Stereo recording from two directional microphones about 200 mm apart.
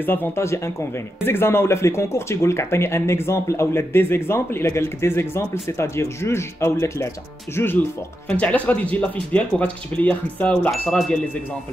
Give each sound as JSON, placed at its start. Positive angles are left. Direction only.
{"t": 0.0, "sound": "speech", "side_deg": 10}